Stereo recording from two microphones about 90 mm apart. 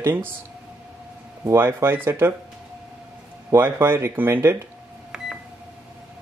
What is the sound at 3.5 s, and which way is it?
Speech, 25° right (ahead or behind).